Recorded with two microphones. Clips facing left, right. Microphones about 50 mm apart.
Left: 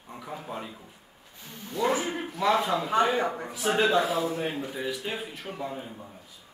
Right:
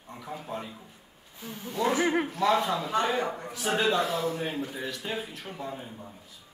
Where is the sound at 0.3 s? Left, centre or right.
Centre.